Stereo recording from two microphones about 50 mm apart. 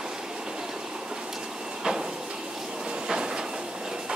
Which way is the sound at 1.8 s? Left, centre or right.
Centre.